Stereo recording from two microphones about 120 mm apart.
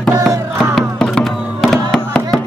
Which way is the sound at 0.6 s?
5° left (ahead or behind).